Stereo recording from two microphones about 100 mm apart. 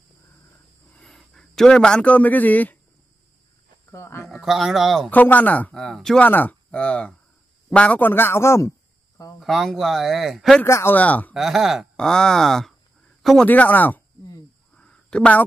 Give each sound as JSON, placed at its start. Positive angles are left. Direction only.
{"t": 0.9, "sound": "speech", "side_deg": 5}
{"t": 3.9, "sound": "a sound", "side_deg": 25}
{"t": 4.3, "sound": "speech", "side_deg": 0}
{"t": 5.1, "sound": "speech", "side_deg": 15}
{"t": 6.2, "sound": "a man's voice", "side_deg": 15}
{"t": 9.4, "sound": "speech", "side_deg": 0}
{"t": 10.6, "sound": "a man's voice", "side_deg": 25}
{"t": 11.3, "sound": "speech", "side_deg": -5}
{"t": 13.5, "sound": "speech", "side_deg": 15}
{"t": 14.8, "sound": "a sound", "side_deg": 10}